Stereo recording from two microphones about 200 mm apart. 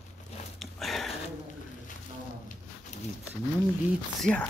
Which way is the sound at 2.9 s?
35° left (ahead or behind).